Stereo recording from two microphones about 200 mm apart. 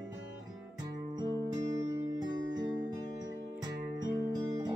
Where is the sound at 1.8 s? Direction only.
15° right (ahead or behind).